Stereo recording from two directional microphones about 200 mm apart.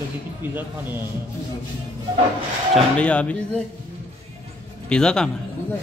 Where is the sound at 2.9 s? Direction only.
5° left (ahead or behind).